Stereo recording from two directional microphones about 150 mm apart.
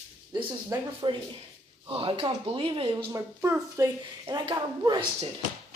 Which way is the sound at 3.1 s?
20° right (ahead or behind).